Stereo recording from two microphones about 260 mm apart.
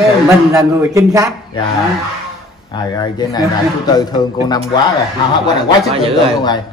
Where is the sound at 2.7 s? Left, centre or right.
Centre.